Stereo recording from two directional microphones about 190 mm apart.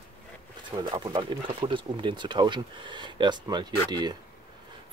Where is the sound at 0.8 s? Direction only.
25° right (ahead or behind).